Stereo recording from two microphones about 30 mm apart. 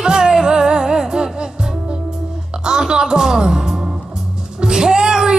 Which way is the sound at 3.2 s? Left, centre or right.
Centre.